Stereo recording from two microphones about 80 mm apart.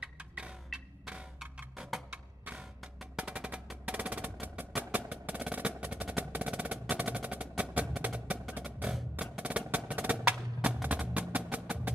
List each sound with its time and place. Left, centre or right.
0.0 s music: centre
3.2 s percussion: centre
8.5 s music: right
9.4 s percussion: centre
10.6 s music: centre